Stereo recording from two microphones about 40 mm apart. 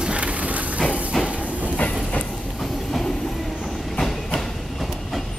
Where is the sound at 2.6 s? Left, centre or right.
Centre.